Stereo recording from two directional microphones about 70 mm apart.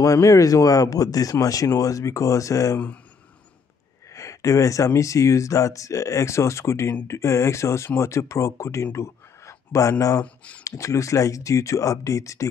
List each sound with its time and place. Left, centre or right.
0.0 s speech: left
4.1 s speech: left
8.9 s a sound: left
10.2 s speech: centre
10.6 s speech: left